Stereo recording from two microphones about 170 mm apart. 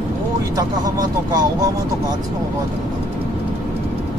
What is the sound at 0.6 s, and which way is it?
Speech, 20° right (ahead or behind).